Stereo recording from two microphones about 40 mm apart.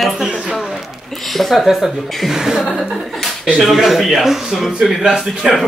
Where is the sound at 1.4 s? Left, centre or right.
Centre.